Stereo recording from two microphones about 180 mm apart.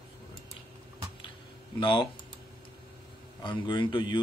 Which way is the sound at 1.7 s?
25° left (ahead or behind).